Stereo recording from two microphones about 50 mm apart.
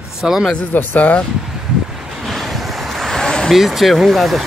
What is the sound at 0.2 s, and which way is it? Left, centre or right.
Speech, centre.